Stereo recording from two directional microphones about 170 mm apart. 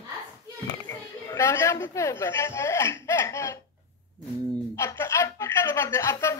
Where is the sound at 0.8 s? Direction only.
15° left (ahead or behind).